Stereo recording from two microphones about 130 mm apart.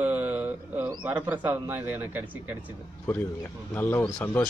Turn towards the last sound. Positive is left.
turn(degrees=15)  # may be behind; listen again after turning